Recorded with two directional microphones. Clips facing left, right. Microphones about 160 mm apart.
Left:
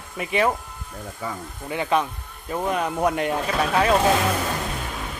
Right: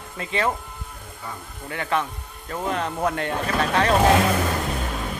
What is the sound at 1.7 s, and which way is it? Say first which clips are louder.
Speech: left 3 dB; 15° left (ahead or behind).